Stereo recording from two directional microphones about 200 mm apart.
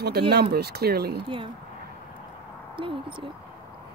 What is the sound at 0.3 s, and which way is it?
Speech, 55° right (ahead or behind).